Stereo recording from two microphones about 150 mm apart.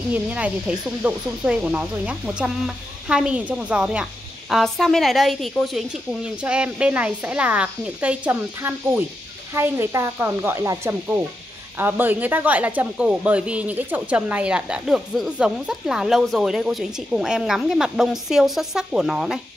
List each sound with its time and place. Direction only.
0.1 s a woman's voice: 10° right (ahead or behind)